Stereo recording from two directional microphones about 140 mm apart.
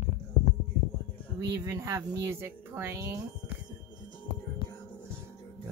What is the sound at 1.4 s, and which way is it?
Speech, 20° right (ahead or behind).